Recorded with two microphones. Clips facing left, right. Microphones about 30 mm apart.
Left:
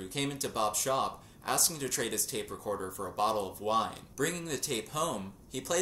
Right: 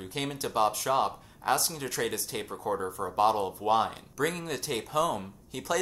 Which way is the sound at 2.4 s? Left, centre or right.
Right.